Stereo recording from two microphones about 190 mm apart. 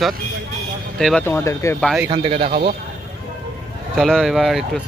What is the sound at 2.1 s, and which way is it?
Speech, 30° right (ahead or behind).